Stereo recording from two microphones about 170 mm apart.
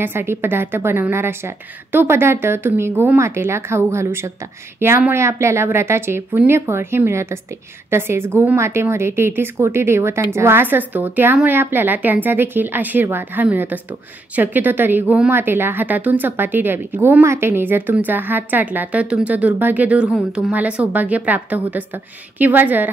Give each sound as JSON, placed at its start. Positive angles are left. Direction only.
{"t": 0.0, "sound": "a woman's voice", "side_deg": -15}